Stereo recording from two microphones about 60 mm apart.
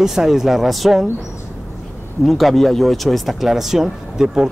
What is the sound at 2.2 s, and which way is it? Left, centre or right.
Speech, centre.